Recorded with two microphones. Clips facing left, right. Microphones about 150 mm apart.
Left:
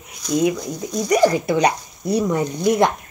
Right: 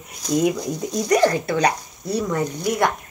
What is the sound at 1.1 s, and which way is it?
Speech, 10° left (ahead or behind).